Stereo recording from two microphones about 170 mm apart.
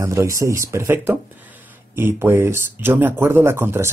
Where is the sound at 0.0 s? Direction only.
15° right (ahead or behind).